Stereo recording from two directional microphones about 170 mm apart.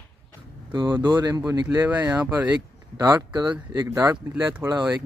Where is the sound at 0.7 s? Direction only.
25° right (ahead or behind).